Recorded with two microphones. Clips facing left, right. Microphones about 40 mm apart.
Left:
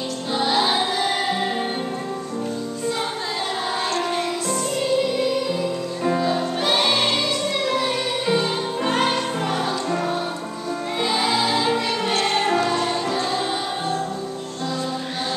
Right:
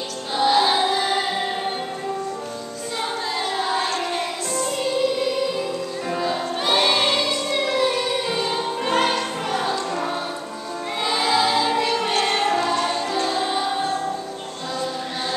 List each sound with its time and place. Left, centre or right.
0.4 s music: centre
4.1 s music: centre
12.1 s music: right
12.4 s music: centre